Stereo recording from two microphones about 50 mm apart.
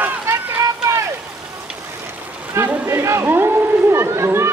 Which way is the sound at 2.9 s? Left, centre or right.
Right.